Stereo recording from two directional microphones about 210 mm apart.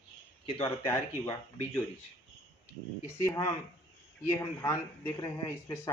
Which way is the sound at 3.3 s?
15° left (ahead or behind).